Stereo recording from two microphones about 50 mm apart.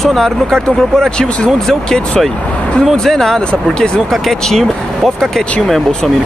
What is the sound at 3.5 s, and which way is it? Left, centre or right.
Speech, centre.